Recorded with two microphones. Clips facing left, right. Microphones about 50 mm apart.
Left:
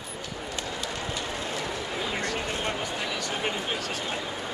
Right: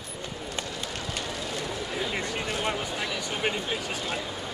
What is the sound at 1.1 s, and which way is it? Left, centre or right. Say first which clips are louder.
Vehicle: left 1 dB; left.